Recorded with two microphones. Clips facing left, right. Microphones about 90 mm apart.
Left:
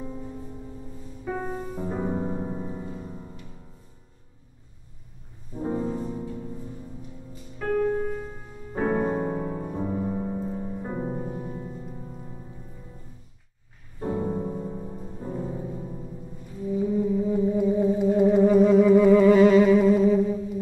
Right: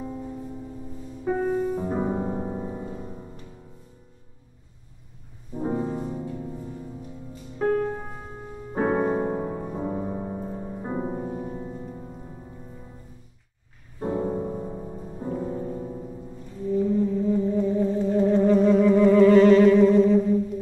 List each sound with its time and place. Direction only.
1.3 s music: 20° right (ahead or behind)
5.5 s music: 20° right (ahead or behind)
7.5 s music: 20° right (ahead or behind)
13.9 s music: 10° right (ahead or behind)
15.2 s music: 20° right (ahead or behind)
16.6 s music: 10° left (ahead or behind)